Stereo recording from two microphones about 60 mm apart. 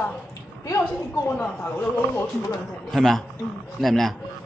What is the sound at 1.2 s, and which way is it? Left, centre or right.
Speech, left.